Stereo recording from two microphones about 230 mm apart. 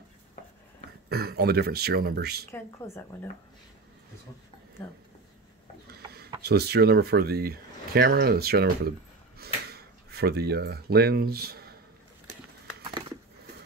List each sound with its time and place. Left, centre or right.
1.0 s speech: right
2.5 s a woman's voice: centre
5.9 s a sound: right
6.4 s speech: right